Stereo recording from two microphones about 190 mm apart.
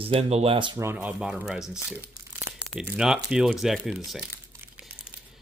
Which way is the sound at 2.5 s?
15° right (ahead or behind).